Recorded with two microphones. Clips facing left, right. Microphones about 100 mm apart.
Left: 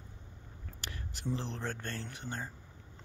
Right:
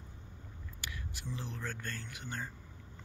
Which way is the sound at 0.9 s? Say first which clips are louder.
Left 7 dB; 35° left (ahead or behind).